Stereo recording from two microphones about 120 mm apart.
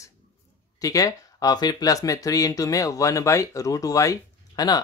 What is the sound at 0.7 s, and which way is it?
Speech, 30° left (ahead or behind).